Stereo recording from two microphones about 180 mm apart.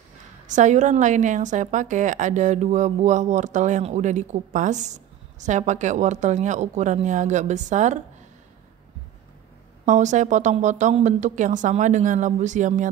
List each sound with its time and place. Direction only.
0.5 s a woman's voice: 40° right (ahead or behind)
9.8 s speech: 40° right (ahead or behind)